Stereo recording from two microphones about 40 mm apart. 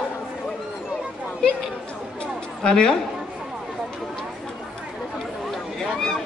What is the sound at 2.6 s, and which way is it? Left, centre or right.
Speech, centre.